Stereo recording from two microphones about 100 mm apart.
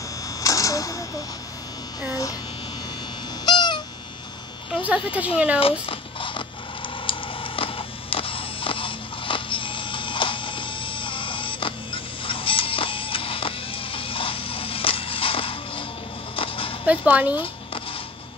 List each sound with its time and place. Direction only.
0.4 s a sound: 35° left (ahead or behind)
3.4 s goose: 45° left (ahead or behind)
4.8 s speech: 15° right (ahead or behind)
5.6 s zipper: 65° left (ahead or behind)
7.1 s printer: 60° left (ahead or behind)
16.3 s a sound: 65° left (ahead or behind)
16.8 s speech: 15° right (ahead or behind)